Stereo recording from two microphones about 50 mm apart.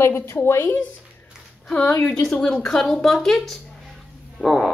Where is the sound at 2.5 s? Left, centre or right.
Centre.